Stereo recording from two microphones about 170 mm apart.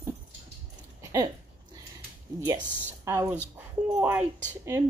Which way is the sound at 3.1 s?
15° right (ahead or behind).